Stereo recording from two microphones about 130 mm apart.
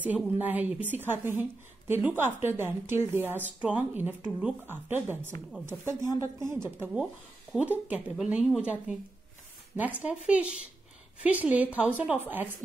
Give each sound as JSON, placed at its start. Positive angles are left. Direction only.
{"t": 0.0, "sound": "a woman's voice", "side_deg": -15}
{"t": 7.9, "sound": "a woman's voice", "side_deg": -10}
{"t": 10.0, "sound": "a woman's voice", "side_deg": -10}